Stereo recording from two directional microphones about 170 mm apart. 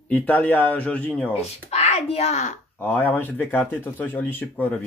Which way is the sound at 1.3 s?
40° left (ahead or behind).